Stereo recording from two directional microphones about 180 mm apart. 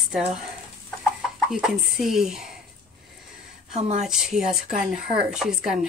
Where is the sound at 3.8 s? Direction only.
40° right (ahead or behind).